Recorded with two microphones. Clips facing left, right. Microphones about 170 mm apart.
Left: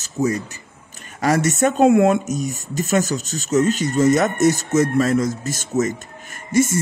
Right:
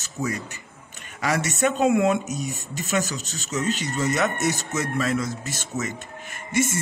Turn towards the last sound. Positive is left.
turn(degrees=45)  # may be behind; listen again after turning